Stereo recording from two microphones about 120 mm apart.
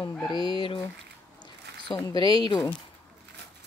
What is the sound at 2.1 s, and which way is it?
Speech, 35° left (ahead or behind).